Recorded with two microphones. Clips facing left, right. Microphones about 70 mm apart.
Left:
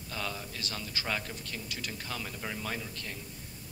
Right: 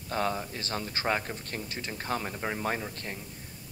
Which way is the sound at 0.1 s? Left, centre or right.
Right.